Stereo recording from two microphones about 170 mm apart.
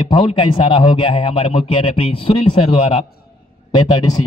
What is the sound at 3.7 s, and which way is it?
Speech, 25° left (ahead or behind).